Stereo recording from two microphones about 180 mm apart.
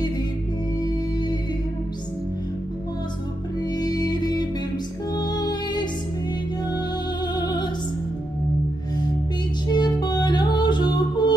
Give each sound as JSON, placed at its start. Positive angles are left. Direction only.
{"t": 0.7, "sound": "music", "side_deg": 20}
{"t": 3.7, "sound": "music", "side_deg": 20}
{"t": 7.3, "sound": "music", "side_deg": 25}
{"t": 9.7, "sound": "music", "side_deg": 25}